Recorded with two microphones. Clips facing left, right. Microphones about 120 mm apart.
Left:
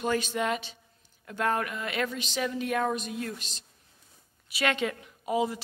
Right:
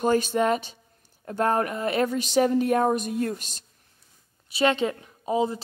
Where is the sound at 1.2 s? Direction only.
35° right (ahead or behind).